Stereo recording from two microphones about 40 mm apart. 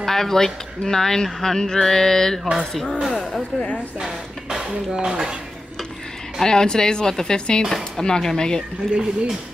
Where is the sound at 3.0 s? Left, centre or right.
Centre.